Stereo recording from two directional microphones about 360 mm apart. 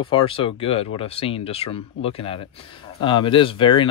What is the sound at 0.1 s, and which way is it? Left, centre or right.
Speech, centre.